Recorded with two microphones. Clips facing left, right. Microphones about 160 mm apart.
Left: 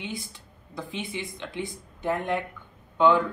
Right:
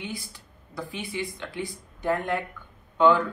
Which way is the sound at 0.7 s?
20° left (ahead or behind).